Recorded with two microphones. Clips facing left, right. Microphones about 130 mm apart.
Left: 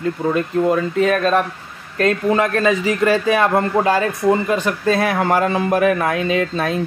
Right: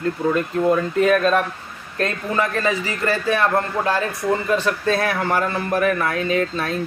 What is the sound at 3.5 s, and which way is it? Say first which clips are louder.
Speech: left 4 dB; 15° left (ahead or behind).